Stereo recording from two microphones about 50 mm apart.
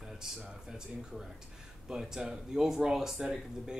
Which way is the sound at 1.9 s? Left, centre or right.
Centre.